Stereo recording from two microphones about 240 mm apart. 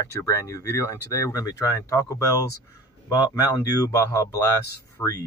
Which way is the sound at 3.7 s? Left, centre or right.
Centre.